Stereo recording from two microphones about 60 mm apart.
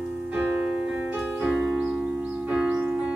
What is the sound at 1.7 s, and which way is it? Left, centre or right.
Music, centre.